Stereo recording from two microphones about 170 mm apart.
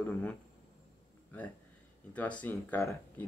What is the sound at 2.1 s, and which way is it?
Speech, 10° left (ahead or behind).